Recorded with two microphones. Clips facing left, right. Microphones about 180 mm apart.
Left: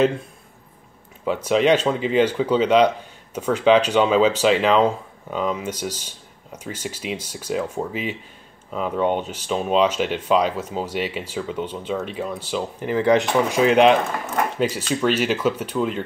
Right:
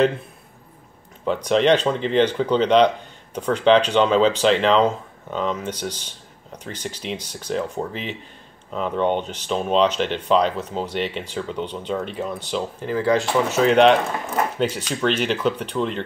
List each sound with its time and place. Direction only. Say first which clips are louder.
1.2 s speech: even; 5° left (ahead or behind)
12.8 s speech: left 3 dB; 20° left (ahead or behind)
13.6 s speech: even; 5° left (ahead or behind)